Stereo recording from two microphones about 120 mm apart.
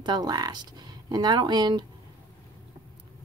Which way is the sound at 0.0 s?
35° right (ahead or behind).